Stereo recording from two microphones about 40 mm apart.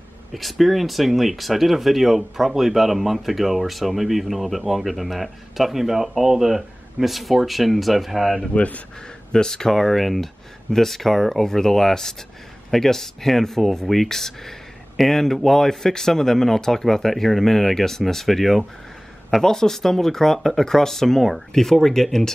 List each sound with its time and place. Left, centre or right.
0.3 s speech: centre
8.5 s speech: left
9.3 s speech: centre